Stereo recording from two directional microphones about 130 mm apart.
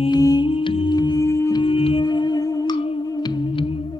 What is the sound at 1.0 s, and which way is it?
Music, 25° left (ahead or behind).